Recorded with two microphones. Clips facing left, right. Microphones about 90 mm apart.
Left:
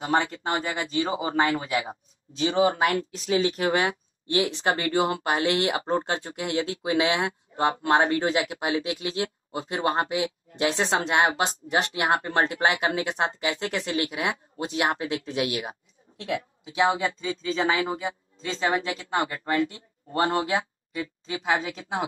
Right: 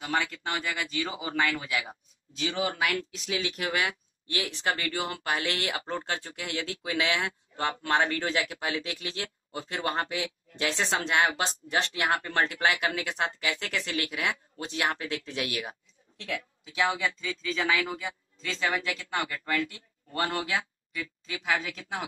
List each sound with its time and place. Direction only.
0.0 s speech: 30° left (ahead or behind)